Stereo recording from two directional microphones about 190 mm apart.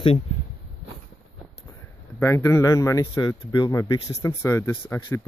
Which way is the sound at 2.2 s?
15° left (ahead or behind).